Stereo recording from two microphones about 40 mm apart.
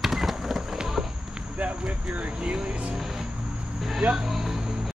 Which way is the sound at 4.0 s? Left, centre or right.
Right.